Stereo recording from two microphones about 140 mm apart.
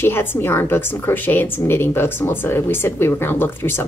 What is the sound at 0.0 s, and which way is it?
A woman's voice, 15° left (ahead or behind).